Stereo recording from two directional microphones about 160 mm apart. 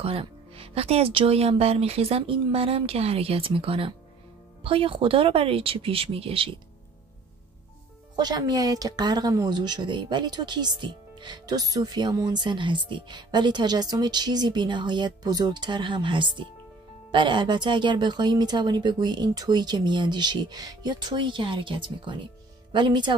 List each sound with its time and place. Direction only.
0.0 s speech: 35° right (ahead or behind)
8.2 s speech: 25° right (ahead or behind)